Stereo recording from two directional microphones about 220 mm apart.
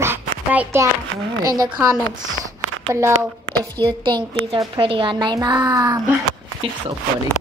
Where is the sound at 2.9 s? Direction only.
15° right (ahead or behind).